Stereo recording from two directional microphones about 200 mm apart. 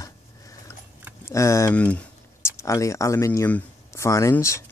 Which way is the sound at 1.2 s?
15° left (ahead or behind).